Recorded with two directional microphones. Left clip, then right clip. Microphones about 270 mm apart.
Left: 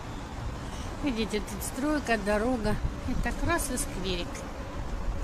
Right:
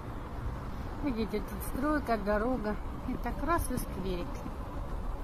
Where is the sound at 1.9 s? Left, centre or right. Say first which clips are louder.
Left 4 dB; centre.